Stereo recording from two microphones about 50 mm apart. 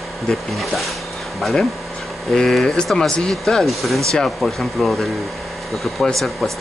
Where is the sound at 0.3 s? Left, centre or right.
Centre.